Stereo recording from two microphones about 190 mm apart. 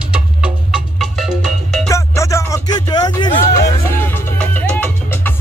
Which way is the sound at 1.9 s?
15° left (ahead or behind).